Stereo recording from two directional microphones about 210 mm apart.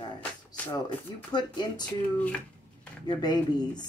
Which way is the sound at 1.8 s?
5° left (ahead or behind).